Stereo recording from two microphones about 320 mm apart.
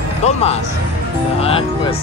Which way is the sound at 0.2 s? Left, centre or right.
Centre.